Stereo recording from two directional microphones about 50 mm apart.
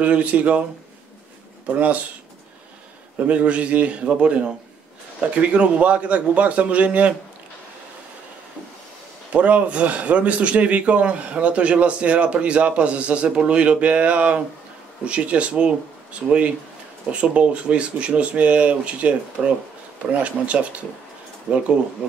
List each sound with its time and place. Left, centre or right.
0.0 s a man's voice: right
1.7 s speech: right
3.3 s a man's voice: right
9.3 s a man's voice: right